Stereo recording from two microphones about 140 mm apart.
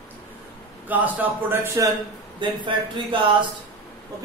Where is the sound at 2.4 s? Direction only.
35° right (ahead or behind).